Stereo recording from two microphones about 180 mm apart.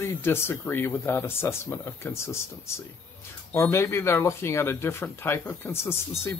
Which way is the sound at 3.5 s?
15° left (ahead or behind).